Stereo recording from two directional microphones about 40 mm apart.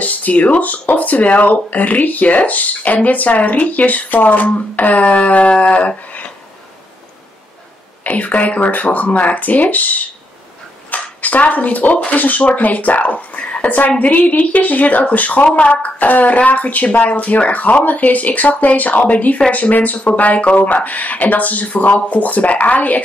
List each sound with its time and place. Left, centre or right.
0.0 s speech: left
8.0 s speech: left
15.4 s speech: left